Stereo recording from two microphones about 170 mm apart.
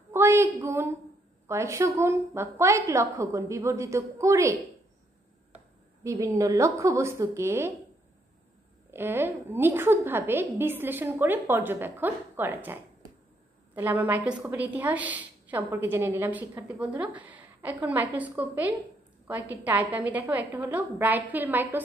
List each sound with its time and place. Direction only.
0.1 s a sound: 15° right (ahead or behind)
1.5 s a woman's voice: 15° right (ahead or behind)
6.0 s a woman's voice: 20° right (ahead or behind)
8.9 s a woman's voice: 15° right (ahead or behind)